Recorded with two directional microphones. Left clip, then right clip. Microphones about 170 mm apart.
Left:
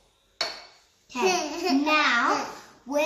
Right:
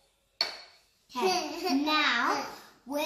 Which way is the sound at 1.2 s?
15° left (ahead or behind).